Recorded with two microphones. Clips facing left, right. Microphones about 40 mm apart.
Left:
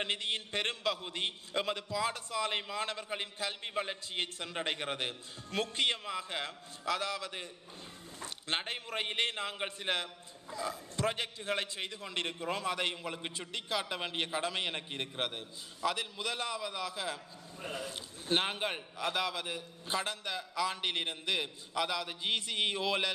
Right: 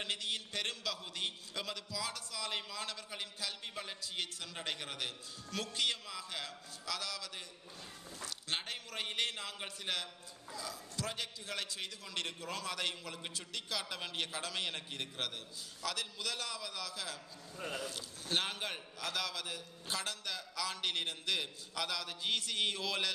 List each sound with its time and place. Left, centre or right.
0.0 s a man's voice: left